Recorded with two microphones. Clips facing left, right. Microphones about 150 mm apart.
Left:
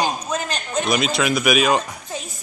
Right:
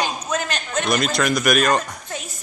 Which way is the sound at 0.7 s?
5° left (ahead or behind).